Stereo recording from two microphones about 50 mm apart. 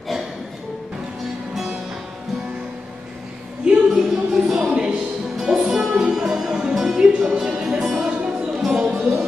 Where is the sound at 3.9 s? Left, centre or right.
Centre.